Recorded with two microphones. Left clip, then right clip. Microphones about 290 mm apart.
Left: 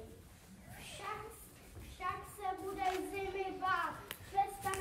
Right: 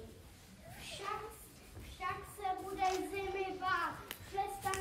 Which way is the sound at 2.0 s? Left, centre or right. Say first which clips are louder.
Even; centre.